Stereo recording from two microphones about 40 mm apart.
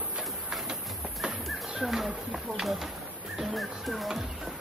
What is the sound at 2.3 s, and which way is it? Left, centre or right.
Music, centre.